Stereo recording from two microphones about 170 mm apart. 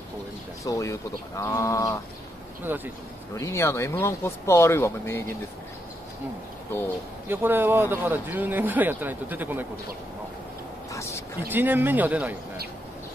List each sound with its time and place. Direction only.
0.7 s speech: 20° left (ahead or behind)
2.6 s speech: 10° right (ahead or behind)
3.3 s speech: 15° left (ahead or behind)
7.2 s speech: 10° right (ahead or behind)
10.9 s a sound: 15° left (ahead or behind)
11.4 s speech: 10° right (ahead or behind)